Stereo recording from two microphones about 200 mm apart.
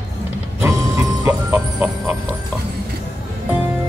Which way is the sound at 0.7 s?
15° right (ahead or behind).